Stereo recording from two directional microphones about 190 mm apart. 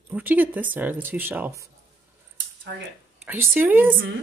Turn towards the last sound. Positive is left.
turn(degrees=-10)  # may be behind; listen again after turning